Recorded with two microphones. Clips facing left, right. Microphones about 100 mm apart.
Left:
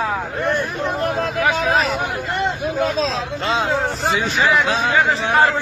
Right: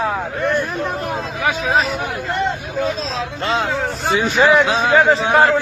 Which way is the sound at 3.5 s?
Centre (ahead or behind).